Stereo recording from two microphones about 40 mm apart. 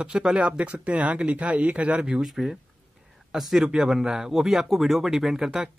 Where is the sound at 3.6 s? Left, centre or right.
Centre.